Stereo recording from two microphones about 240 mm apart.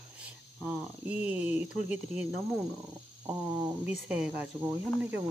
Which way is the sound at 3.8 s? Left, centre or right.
Centre.